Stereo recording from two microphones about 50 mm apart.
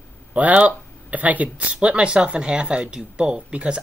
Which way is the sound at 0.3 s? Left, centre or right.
Right.